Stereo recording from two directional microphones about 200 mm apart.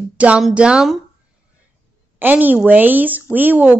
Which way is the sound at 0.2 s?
5° right (ahead or behind).